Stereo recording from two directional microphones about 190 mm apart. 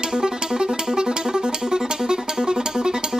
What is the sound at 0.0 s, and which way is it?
Music, 5° right (ahead or behind).